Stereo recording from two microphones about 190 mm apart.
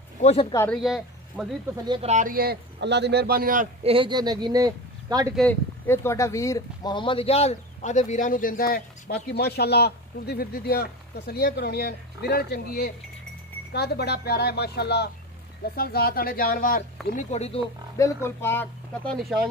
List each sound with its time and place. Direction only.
0.2 s speech: 35° left (ahead or behind)
0.7 s speech: centre (ahead or behind)
1.9 s a man's voice: 35° right (ahead or behind); by 3.6 s 50° right (ahead or behind)
3.8 s speech: 30° right (ahead or behind)
5.3 s speech: 5° left (ahead or behind); by 17.6 s 35° left (ahead or behind)
17.9 s speech: 15° left (ahead or behind)